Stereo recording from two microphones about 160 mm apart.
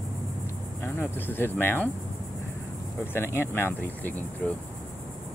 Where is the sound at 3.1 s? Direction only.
15° left (ahead or behind).